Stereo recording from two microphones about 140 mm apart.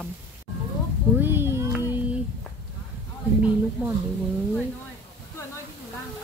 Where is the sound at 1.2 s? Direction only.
15° right (ahead or behind).